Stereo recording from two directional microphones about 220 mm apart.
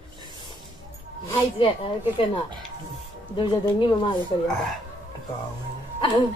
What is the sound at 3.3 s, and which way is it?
Speech, 20° left (ahead or behind).